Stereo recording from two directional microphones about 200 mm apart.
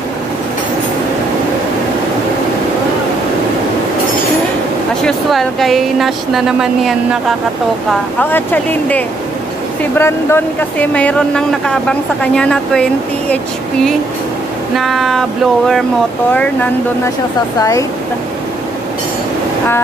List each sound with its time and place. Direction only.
5.0 s speech: centre (ahead or behind)
8.2 s speech: 10° left (ahead or behind)
14.8 s speech: centre (ahead or behind)
17.6 s speech: 15° left (ahead or behind)